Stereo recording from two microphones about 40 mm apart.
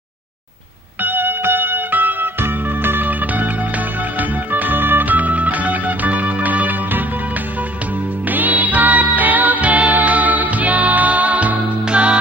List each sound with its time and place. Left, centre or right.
1.0 s music: right
8.3 s music: right